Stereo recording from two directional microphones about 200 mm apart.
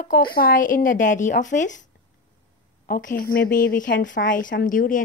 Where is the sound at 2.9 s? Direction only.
45° left (ahead or behind).